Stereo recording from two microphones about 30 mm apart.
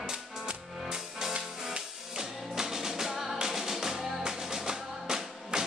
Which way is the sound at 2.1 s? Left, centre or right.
Centre.